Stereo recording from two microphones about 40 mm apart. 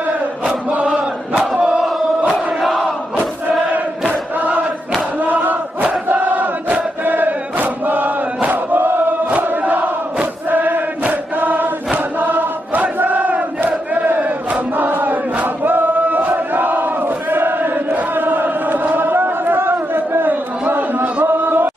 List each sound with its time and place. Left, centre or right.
0.5 s chant: right
1.3 s crowd: centre
4.4 s chant: right
5.2 s crowd: right
9.4 s chant: right
13.0 s battle cry: right
18.1 s a sound: right
20.2 s a sound: right